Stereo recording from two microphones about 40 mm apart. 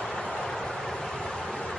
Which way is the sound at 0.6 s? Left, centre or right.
Centre.